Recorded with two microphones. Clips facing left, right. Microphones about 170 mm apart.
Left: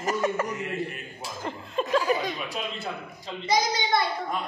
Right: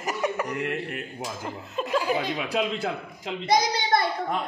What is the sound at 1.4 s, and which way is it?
Speech, 5° right (ahead or behind).